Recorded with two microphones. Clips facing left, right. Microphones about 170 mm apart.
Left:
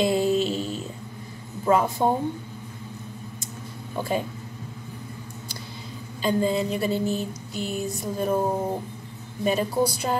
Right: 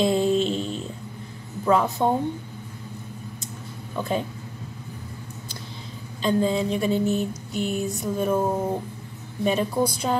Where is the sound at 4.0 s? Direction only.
5° left (ahead or behind).